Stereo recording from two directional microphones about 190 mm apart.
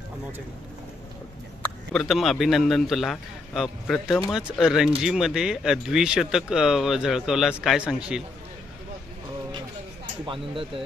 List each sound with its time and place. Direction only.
1.6 s speech: centre (ahead or behind)
10.2 s speech: 25° right (ahead or behind)